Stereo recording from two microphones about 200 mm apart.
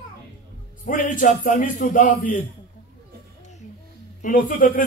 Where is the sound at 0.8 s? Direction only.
40° left (ahead or behind).